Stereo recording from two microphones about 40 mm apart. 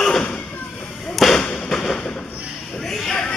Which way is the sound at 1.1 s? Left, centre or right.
Centre.